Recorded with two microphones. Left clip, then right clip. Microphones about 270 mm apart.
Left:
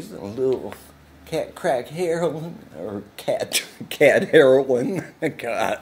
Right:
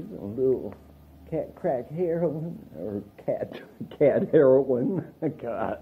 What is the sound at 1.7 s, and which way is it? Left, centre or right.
Speech, centre.